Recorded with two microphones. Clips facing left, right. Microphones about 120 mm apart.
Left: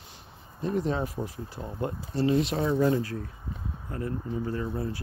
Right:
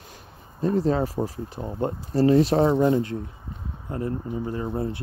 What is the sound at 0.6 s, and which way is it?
Speech, 40° right (ahead or behind).